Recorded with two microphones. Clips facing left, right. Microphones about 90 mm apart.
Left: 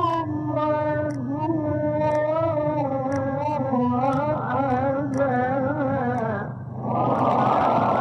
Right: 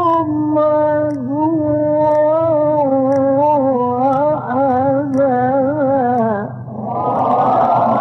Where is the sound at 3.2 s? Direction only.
45° right (ahead or behind).